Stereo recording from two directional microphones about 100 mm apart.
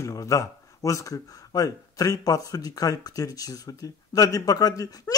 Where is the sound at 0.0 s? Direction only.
35° left (ahead or behind).